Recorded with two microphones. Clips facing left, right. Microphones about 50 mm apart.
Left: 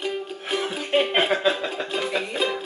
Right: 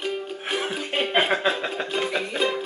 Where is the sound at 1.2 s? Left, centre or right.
Centre.